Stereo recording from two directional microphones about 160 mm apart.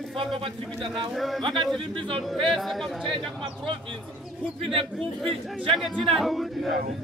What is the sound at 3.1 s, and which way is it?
Speech, 30° right (ahead or behind).